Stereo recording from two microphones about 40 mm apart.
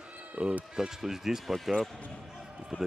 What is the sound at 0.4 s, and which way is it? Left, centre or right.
Speech, right.